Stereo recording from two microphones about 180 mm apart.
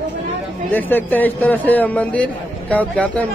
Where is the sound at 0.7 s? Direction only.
10° left (ahead or behind).